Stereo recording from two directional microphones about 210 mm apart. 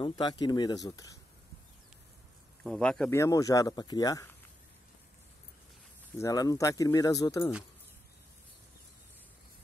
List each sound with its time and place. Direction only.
0.0 s speech: 20° left (ahead or behind)
2.6 s speech: 5° left (ahead or behind)
6.1 s speech: 15° left (ahead or behind)